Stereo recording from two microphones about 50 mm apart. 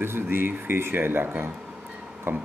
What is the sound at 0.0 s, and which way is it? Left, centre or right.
Speech, right.